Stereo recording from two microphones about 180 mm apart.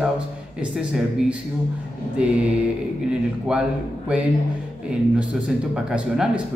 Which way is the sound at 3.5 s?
5° right (ahead or behind).